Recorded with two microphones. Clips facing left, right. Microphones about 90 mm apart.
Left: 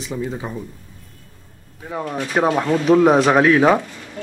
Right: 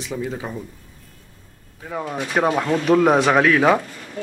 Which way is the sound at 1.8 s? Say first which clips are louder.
Left 1 dB; centre (ahead or behind).